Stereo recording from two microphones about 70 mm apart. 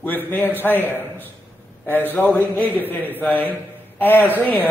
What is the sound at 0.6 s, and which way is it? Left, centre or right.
A man's voice, left.